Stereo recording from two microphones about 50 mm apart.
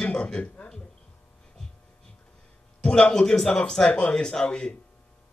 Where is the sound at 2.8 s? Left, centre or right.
Centre.